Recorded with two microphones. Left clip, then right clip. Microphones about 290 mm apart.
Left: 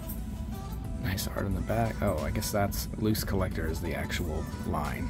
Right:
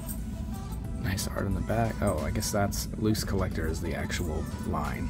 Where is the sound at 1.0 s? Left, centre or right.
Centre.